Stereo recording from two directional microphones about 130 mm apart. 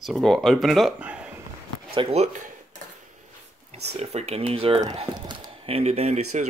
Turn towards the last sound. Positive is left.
turn(degrees=-60)  # may be behind; listen again after turning